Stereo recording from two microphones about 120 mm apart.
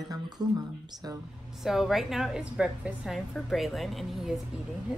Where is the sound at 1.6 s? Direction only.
Centre (ahead or behind).